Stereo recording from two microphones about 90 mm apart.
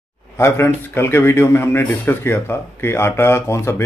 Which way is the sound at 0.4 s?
30° left (ahead or behind).